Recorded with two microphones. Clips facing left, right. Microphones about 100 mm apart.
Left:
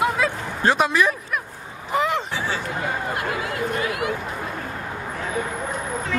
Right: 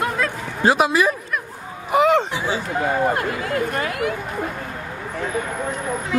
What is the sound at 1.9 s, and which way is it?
Speech, 20° right (ahead or behind).